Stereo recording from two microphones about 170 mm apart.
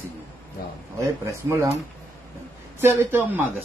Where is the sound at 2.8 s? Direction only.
15° right (ahead or behind).